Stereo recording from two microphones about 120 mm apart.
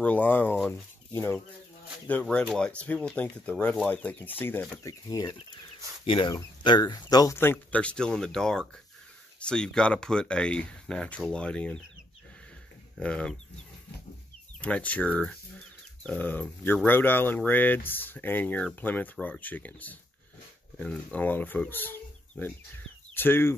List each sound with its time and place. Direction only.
0.0 s speech: 15° left (ahead or behind)
2.2 s speech: 5° left (ahead or behind)
4.8 s speech: 30° left (ahead or behind)
6.0 s speech: 45° left (ahead or behind)
6.3 s speech: 35° left (ahead or behind)
7.3 s speech: 20° left (ahead or behind)
13.0 s speech: 10° left (ahead or behind)
14.6 s speech: 10° left (ahead or behind)